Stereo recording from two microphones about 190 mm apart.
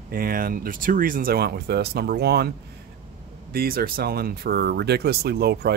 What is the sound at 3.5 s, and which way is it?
Speech, 50° right (ahead or behind).